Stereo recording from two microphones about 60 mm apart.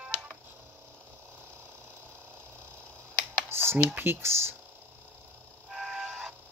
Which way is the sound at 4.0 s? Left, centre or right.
Right.